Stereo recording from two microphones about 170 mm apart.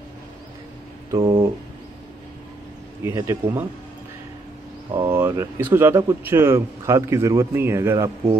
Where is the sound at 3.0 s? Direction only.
15° right (ahead or behind).